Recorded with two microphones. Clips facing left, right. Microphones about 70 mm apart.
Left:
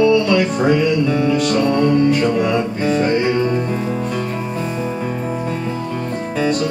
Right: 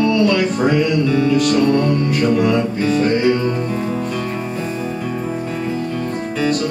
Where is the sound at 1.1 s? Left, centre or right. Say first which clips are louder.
Right 1 dB; centre.